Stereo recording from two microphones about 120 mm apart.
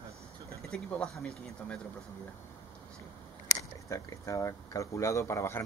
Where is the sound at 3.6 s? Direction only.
25° left (ahead or behind).